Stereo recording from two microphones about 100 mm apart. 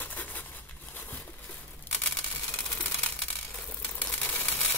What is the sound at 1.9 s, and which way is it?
Camera, 20° left (ahead or behind).